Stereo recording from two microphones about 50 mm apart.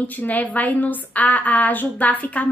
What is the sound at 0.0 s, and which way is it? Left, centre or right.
A woman's voice, left.